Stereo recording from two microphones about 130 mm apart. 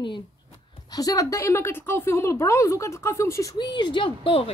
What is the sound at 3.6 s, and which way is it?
Speech, 35° left (ahead or behind).